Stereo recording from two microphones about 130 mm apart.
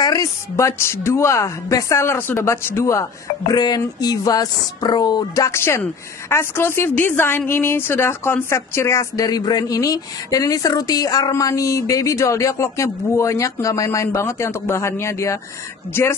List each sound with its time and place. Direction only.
0.0 s speech: 25° left (ahead or behind)